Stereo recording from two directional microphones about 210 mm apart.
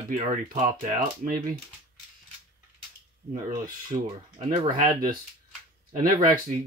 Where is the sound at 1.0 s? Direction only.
40° right (ahead or behind).